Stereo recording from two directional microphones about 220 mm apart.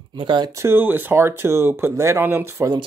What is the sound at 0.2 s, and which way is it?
Speech, 20° right (ahead or behind).